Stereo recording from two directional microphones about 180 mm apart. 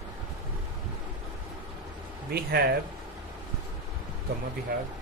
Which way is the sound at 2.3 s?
60° right (ahead or behind).